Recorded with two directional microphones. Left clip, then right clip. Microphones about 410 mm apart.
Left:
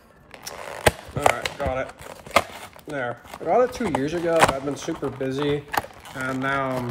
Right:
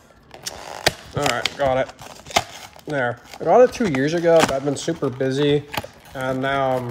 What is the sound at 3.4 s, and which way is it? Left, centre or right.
Speech, right.